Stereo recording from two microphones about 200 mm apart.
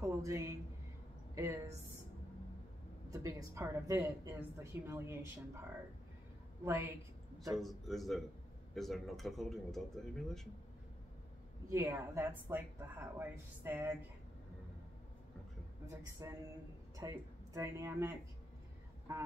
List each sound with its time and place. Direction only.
0.0 s a woman's voice: 15° right (ahead or behind)
3.1 s a woman's voice: 15° right (ahead or behind)
6.6 s a woman's voice: 10° right (ahead or behind)
7.5 s speech: centre (ahead or behind)
11.7 s a woman's voice: 15° right (ahead or behind)
16.2 s a woman's voice: 15° right (ahead or behind)